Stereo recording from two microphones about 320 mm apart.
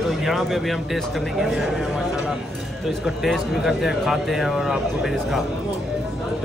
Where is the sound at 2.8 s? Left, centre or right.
Centre.